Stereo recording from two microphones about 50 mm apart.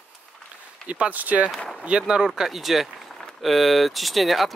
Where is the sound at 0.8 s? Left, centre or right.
Right.